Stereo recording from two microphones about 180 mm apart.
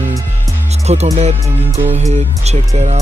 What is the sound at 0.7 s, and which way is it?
Music, 35° right (ahead or behind).